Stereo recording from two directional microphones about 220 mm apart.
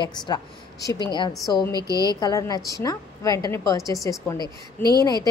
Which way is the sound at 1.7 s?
15° right (ahead or behind).